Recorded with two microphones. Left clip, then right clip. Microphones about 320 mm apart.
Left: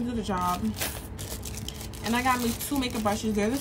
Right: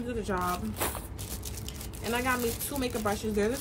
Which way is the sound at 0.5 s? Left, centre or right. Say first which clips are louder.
Left 2 dB; centre.